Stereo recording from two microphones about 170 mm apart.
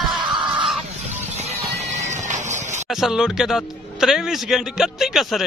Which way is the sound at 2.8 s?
Centre (ahead or behind).